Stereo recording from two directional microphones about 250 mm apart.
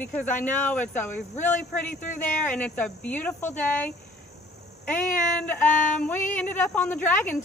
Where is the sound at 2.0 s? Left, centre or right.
Left.